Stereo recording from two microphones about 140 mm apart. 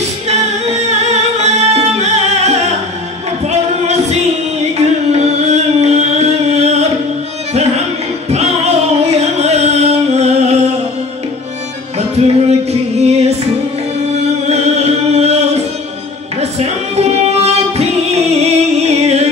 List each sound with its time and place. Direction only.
0.3 s music: 50° right (ahead or behind)
8.3 s music: 50° right (ahead or behind)
12.2 s music: 45° right (ahead or behind)
14.1 s music: 50° right (ahead or behind)